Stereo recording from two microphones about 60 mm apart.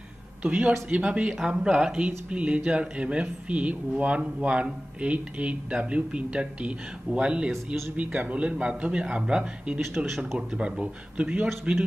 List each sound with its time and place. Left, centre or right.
0.4 s speech: right
9.8 s speech: centre
10.5 s speech: centre